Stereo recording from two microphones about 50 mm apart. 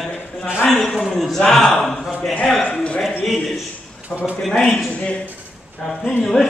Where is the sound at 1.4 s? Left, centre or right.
Centre.